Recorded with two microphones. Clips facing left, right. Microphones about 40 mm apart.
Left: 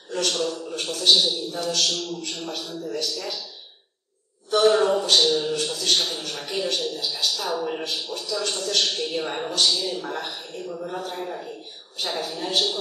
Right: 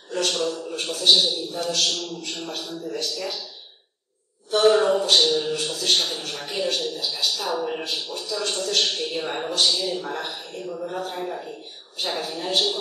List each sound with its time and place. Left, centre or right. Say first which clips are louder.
0.2 s a man's voice: right 1 dB; centre
3.0 s a man's voice: right 1 dB; centre
4.6 s a sound: right 1 dB; centre
5.1 s a man's voice: even; centre